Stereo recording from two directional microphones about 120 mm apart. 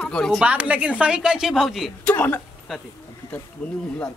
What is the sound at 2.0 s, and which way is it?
Speech, 15° left (ahead or behind).